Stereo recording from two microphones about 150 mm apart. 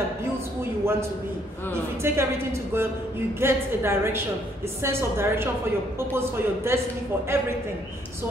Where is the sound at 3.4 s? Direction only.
15° right (ahead or behind).